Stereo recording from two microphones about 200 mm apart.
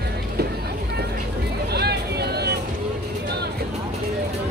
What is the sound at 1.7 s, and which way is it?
Vehicle, 55° right (ahead or behind).